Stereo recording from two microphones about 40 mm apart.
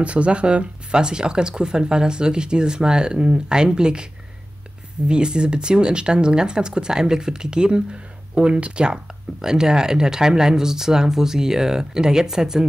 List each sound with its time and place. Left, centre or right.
0.0 s speech: right
8.8 s speech: centre